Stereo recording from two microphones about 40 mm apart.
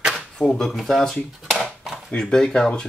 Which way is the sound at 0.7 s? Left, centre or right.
Centre.